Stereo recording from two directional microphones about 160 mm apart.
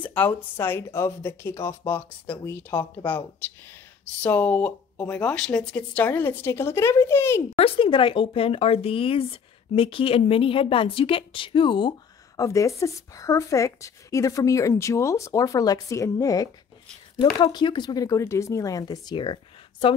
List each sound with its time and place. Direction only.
0.0 s speech: 10° left (ahead or behind)
4.2 s speech: 10° left (ahead or behind)
7.5 s speech: 35° left (ahead or behind)
12.4 s speech: 20° left (ahead or behind)